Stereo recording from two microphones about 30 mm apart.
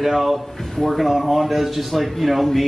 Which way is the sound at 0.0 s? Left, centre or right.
Centre.